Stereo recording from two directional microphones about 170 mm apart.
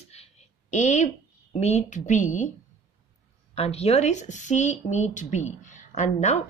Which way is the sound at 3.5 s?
35° left (ahead or behind).